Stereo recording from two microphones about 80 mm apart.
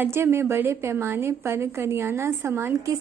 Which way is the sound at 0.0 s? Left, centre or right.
Right.